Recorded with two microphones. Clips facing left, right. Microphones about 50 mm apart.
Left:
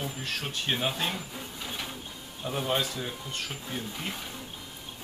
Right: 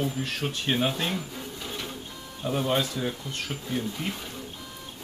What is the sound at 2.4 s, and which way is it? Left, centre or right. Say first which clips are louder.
Speech: right 3 dB; centre.